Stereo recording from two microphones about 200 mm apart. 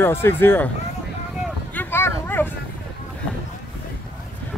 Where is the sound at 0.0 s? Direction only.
10° left (ahead or behind).